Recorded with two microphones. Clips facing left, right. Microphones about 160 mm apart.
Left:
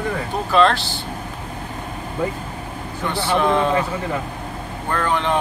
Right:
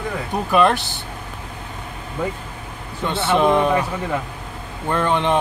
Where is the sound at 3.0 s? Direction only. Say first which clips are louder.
Right 2 dB; 20° right (ahead or behind).